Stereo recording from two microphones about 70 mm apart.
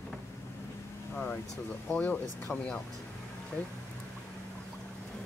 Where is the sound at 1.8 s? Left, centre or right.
Left.